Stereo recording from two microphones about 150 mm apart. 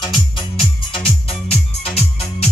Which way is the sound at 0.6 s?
40° left (ahead or behind).